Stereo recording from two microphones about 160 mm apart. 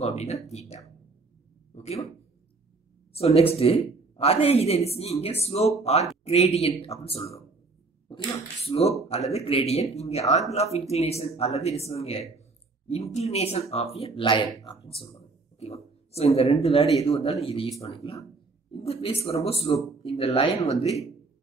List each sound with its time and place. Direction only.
0.0 s a sound: 40° left (ahead or behind)
0.5 s speech: 40° left (ahead or behind)
3.1 s speech: 40° left (ahead or behind)
15.6 s speech: 40° left (ahead or behind)
20.7 s speech: centre (ahead or behind)